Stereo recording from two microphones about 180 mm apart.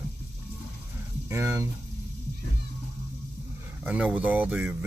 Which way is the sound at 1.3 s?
15° right (ahead or behind).